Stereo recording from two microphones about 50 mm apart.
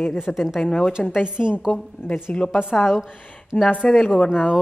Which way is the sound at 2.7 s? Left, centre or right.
Centre.